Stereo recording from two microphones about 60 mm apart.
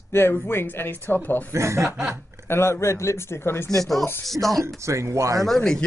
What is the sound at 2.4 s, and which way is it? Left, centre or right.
Speech, left.